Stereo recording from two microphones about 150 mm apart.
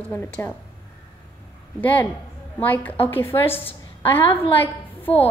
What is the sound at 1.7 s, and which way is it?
A woman's voice, 10° left (ahead or behind).